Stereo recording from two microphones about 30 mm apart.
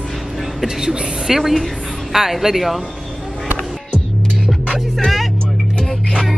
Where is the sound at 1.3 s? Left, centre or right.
Centre.